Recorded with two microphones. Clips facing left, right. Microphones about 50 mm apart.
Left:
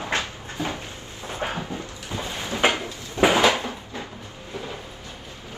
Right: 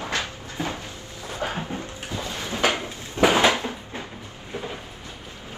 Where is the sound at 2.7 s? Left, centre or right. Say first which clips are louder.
Even; right.